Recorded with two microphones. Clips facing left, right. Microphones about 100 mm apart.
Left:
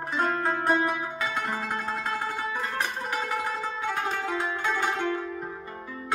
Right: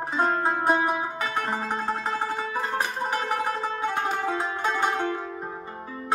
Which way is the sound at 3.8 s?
25° right (ahead or behind).